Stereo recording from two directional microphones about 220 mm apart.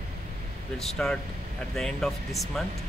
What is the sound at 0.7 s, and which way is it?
A man's voice, centre (ahead or behind).